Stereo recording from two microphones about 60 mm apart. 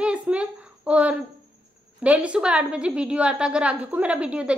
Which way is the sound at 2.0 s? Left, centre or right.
Right.